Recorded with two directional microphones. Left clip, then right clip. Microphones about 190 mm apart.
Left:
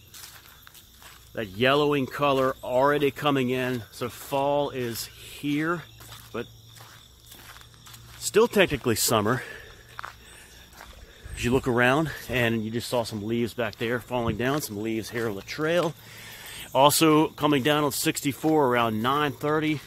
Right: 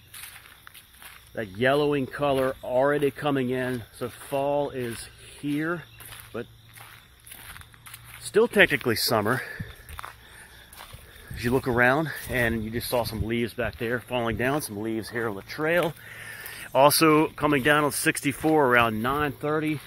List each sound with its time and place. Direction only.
1.3 s speech: 5° right (ahead or behind)
8.3 s speech: 5° right (ahead or behind)
8.8 s speech: 15° left (ahead or behind)
11.3 s speech: 15° left (ahead or behind)
13.6 s speech: 5° right (ahead or behind)
15.1 s speech: 15° left (ahead or behind); by 19.8 s 5° right (ahead or behind)